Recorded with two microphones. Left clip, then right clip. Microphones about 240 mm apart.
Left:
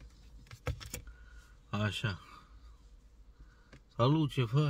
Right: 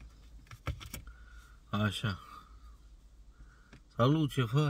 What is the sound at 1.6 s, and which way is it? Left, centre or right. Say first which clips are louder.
Speech: right 1 dB; centre.